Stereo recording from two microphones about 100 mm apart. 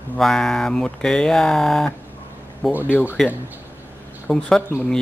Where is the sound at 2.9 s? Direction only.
20° left (ahead or behind).